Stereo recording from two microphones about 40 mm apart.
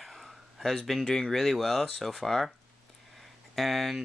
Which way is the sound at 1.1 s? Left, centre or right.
Centre.